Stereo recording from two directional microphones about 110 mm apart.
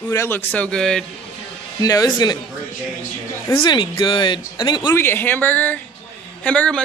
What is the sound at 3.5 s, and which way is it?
Speech, 45° left (ahead or behind).